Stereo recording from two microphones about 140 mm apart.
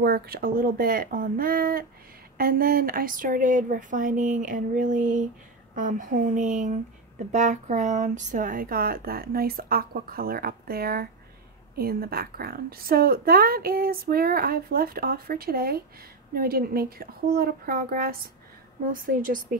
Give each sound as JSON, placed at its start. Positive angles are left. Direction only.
{"t": 0.1, "sound": "a woman's voice", "side_deg": -90}
{"t": 18.9, "sound": "speech", "side_deg": -80}